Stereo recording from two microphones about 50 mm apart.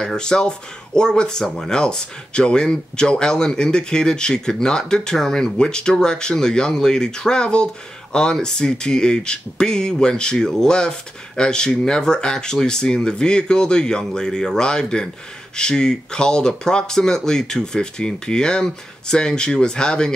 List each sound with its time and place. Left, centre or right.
0.0 s speech: centre